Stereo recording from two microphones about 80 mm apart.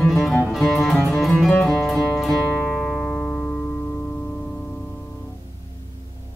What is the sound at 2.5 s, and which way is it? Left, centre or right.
Music, centre.